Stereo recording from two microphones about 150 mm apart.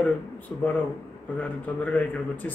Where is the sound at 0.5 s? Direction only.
15° left (ahead or behind).